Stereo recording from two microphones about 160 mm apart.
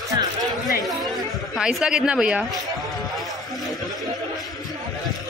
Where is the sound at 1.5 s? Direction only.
5° right (ahead or behind).